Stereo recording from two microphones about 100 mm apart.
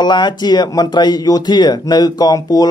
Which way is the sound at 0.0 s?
50° left (ahead or behind).